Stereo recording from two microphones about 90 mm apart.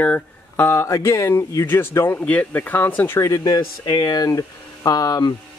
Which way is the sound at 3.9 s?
45° left (ahead or behind).